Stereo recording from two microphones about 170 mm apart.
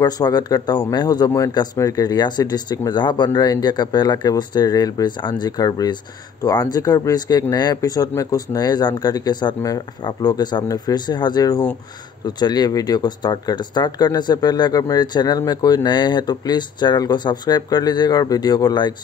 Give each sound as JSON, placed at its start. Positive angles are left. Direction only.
{"t": 0.0, "sound": "speech", "side_deg": 25}